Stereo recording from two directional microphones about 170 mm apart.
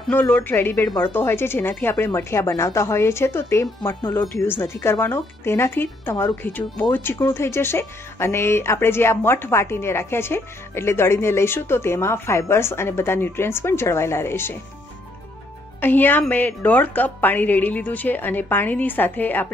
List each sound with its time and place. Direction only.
0.1 s speech: 10° left (ahead or behind)
15.8 s speech: 10° left (ahead or behind)